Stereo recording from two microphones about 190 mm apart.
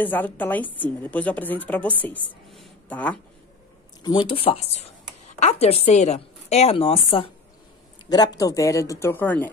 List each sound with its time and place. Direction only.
0.0 s a woman's voice: 10° left (ahead or behind)
2.5 s a sound: 5° left (ahead or behind)
4.0 s a woman's voice: 25° left (ahead or behind)
8.4 s a woman's voice: 20° left (ahead or behind)